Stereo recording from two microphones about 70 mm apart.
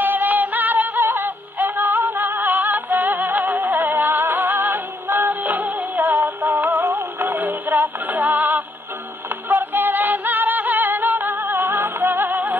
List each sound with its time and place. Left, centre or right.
0.0 s music: right